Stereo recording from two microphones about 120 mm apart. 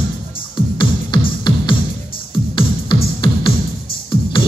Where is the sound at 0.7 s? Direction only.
40° left (ahead or behind).